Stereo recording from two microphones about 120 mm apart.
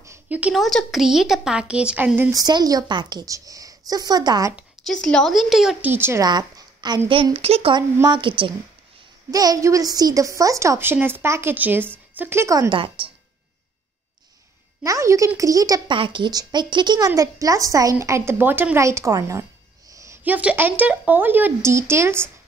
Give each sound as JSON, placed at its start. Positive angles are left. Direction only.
{"t": 0.3, "sound": "speech", "side_deg": -10}
{"t": 0.6, "sound": "a woman's voice", "side_deg": 0}
{"t": 2.3, "sound": "a woman's voice", "side_deg": -35}
{"t": 4.8, "sound": "a woman's voice", "side_deg": 5}
{"t": 5.8, "sound": "a woman's voice", "side_deg": -15}
{"t": 6.2, "sound": "speech", "side_deg": -35}
{"t": 7.3, "sound": "speech", "side_deg": -55}
{"t": 7.7, "sound": "a woman's voice", "side_deg": -40}
{"t": 9.3, "sound": "a woman's voice", "side_deg": -30}
{"t": 12.6, "sound": "a woman's voice", "side_deg": -45}
{"t": 14.8, "sound": "a woman's voice", "side_deg": -25}
{"t": 15.9, "sound": "a woman's voice", "side_deg": -45}
{"t": 19.9, "sound": "a sound", "side_deg": -25}
{"t": 20.2, "sound": "speech", "side_deg": -15}